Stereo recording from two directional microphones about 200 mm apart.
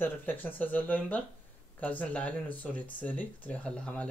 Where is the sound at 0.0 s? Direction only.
10° left (ahead or behind).